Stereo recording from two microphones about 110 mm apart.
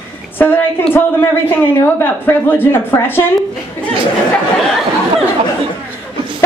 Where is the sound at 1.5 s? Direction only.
20° left (ahead or behind).